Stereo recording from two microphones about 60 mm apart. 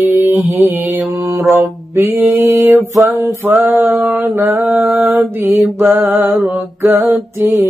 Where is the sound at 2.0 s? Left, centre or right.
Right.